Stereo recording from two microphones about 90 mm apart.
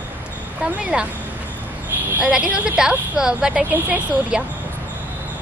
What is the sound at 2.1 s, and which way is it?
A woman's voice, 15° right (ahead or behind).